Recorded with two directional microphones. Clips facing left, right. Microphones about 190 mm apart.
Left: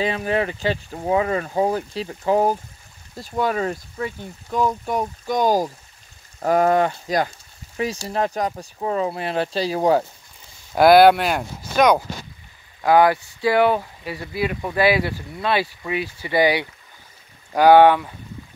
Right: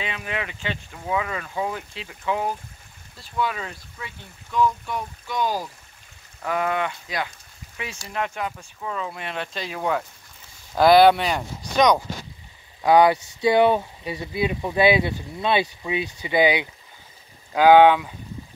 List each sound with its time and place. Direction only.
0.0 s speech: 40° left (ahead or behind)
10.7 s speech: 10° left (ahead or behind)
13.3 s speech: 20° right (ahead or behind)